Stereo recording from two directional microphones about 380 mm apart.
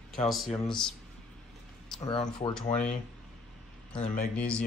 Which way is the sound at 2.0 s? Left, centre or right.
Centre.